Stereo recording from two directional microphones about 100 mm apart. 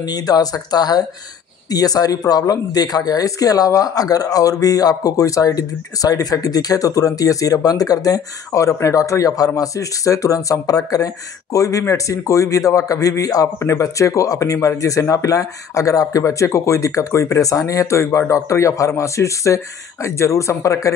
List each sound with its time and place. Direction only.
0.0 s speech: 40° left (ahead or behind)